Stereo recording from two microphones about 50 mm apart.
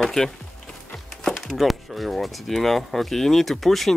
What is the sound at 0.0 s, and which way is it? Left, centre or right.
Speech, centre.